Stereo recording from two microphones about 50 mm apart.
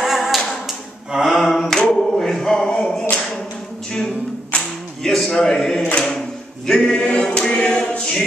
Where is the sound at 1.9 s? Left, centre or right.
Centre.